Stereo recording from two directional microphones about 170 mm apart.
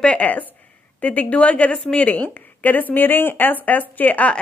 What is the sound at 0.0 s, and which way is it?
A woman's voice, 5° left (ahead or behind).